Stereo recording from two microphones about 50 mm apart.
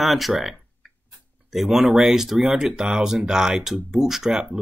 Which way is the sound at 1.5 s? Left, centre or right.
Centre.